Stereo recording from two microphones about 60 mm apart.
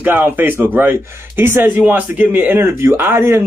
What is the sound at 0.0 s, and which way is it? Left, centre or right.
Speech, right.